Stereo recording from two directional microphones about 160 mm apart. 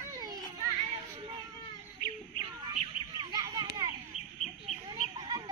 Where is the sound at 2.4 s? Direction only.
25° right (ahead or behind).